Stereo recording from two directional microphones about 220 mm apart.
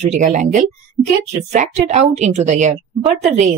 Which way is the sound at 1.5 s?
30° right (ahead or behind).